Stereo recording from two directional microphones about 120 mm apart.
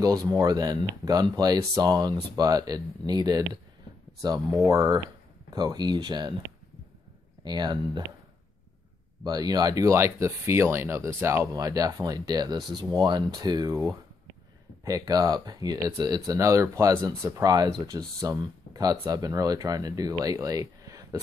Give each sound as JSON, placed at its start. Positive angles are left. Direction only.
{"t": 0.0, "sound": "speech", "side_deg": -30}
{"t": 7.4, "sound": "speech", "side_deg": -35}
{"t": 9.2, "sound": "speech", "side_deg": -35}
{"t": 13.7, "sound": "speech", "side_deg": -25}